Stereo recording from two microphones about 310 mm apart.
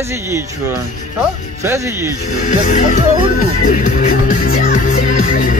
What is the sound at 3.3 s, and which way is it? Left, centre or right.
Music, left.